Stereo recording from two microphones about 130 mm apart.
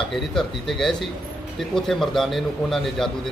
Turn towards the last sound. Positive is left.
turn(degrees=5)  # may be behind; listen again after turning